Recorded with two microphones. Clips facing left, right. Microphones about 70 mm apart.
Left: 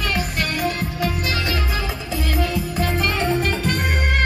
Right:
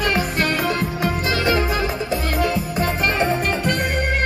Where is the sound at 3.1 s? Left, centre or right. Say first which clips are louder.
Right 1 dB; right.